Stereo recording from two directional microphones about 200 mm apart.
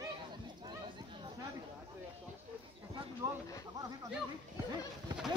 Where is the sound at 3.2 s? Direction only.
15° right (ahead or behind).